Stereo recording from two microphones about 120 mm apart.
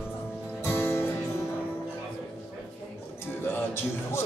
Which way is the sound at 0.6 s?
20° left (ahead or behind).